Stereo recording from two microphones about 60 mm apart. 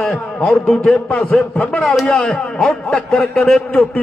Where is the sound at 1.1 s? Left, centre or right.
Left.